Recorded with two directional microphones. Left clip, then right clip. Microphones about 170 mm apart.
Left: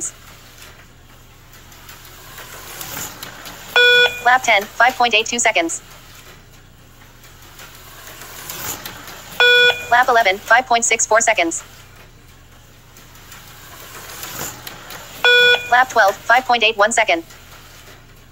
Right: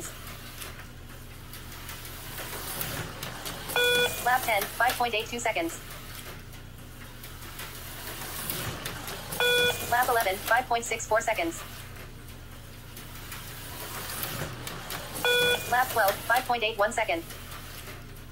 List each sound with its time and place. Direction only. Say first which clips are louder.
3.7 s speech: left 13 dB; 55° left (ahead or behind)
9.4 s speech: left 13 dB; 55° left (ahead or behind)
15.2 s speech: left 13 dB; 55° left (ahead or behind)